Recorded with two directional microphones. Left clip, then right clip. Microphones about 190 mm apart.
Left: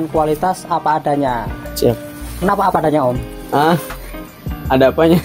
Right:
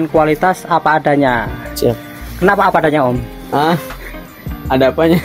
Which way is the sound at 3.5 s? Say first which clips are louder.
Even; centre (ahead or behind).